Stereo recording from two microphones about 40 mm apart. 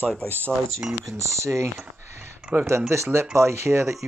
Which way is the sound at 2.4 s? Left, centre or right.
Right.